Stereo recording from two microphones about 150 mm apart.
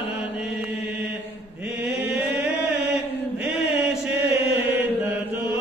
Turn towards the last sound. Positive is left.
turn(degrees=-15)  # may be behind; listen again after turning